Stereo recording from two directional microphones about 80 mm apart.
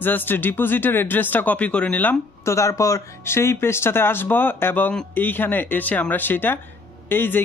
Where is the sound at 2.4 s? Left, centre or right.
Left.